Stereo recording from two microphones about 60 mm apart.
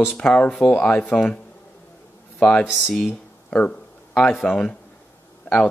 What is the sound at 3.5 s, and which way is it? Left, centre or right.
Speech, centre.